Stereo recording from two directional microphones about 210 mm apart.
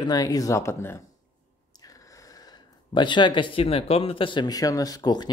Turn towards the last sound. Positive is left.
turn(degrees=20)  # may be behind; listen again after turning